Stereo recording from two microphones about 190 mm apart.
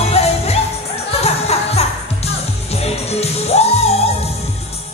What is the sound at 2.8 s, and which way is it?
Music, 35° left (ahead or behind).